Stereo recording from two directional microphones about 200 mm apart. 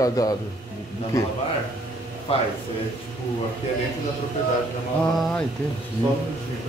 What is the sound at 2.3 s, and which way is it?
Speech, 30° left (ahead or behind).